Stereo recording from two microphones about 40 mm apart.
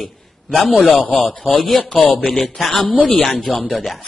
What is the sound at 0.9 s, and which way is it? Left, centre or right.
Speech, left.